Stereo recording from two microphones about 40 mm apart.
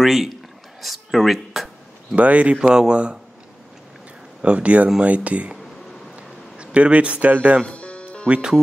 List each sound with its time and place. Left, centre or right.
0.0 s speech: centre
2.1 s speech: right
2.6 s speech: centre
4.4 s speech: right
6.1 s a sound: right
7.6 s music: left